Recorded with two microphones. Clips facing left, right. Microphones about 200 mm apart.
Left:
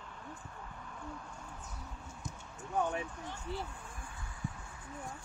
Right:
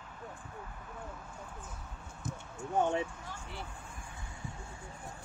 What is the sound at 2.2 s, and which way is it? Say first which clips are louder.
Basketball bounce: right 7 dB; 50° right (ahead or behind).